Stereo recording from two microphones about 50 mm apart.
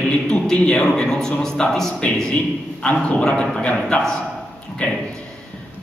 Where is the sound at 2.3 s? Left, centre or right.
Left.